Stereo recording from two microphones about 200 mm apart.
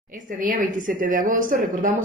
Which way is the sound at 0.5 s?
40° right (ahead or behind).